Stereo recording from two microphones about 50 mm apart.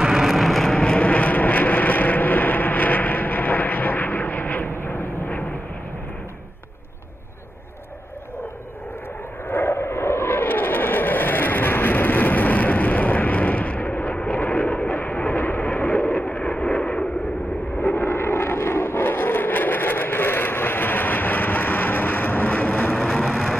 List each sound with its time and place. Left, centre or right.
0.0 s vehicle: centre
0.7 s vehicle: left
9.5 s vehicle: left
9.8 s vehicle: left
16.3 s vehicle: left
17.8 s vehicle: left